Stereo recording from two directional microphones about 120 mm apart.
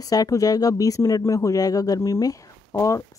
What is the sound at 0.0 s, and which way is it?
Speech, 30° left (ahead or behind).